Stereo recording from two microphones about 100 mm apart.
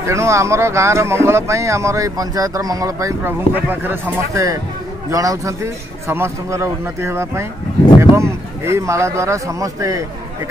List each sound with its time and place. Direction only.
0.0 s speech: 30° right (ahead or behind)